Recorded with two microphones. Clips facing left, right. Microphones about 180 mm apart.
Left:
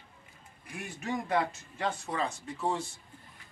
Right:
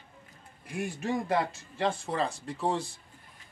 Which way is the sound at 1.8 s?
30° right (ahead or behind).